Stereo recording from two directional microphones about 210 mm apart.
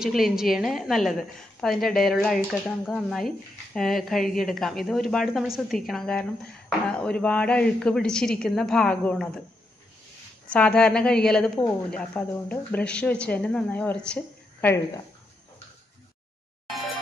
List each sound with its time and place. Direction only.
0.0 s a woman's voice: centre (ahead or behind)
10.5 s a woman's voice: 5° left (ahead or behind)
16.6 s a sound: centre (ahead or behind)